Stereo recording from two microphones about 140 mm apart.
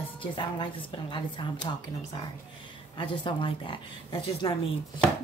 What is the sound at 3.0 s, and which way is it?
A woman's voice, 40° left (ahead or behind).